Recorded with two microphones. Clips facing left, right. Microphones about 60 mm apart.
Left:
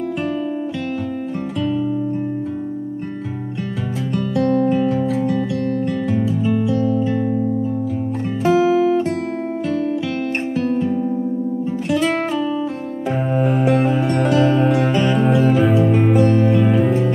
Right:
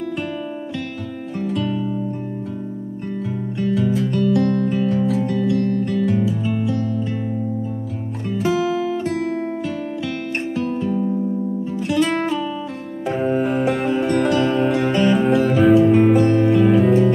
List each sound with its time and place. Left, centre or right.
3.6 s music: centre
8.5 s music: centre
10.5 s music: centre
13.3 s music: centre